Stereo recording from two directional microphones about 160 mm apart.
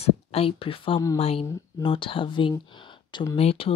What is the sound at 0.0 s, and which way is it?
Speech, 40° left (ahead or behind).